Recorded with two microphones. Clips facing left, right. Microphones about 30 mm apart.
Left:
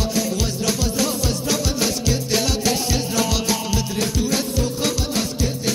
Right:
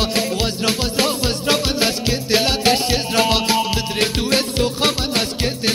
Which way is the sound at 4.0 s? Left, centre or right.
Right.